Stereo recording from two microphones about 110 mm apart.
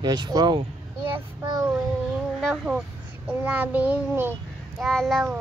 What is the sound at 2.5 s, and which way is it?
Child singing, 5° right (ahead or behind).